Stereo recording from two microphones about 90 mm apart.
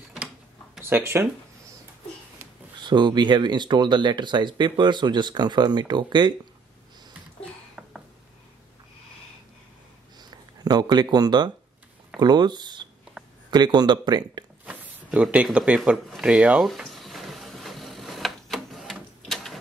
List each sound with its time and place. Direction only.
0.7 s speech: 25° right (ahead or behind)
2.8 s speech: 55° right (ahead or behind)
10.3 s speech: 50° right (ahead or behind)
13.2 s a sound: 10° right (ahead or behind)
13.5 s speech: 50° right (ahead or behind)
14.7 s a sound: 10° right (ahead or behind)
15.5 s speech: 10° right (ahead or behind)
16.8 s printer: centre (ahead or behind)
19.2 s gears: centre (ahead or behind)